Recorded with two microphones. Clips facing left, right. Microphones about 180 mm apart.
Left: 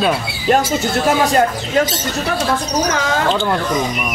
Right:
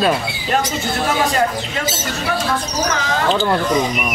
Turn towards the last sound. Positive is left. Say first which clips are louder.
# even
turn(degrees=0)  # may be behind; listen again after turning